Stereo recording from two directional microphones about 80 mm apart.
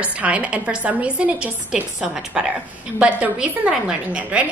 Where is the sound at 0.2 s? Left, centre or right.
Centre.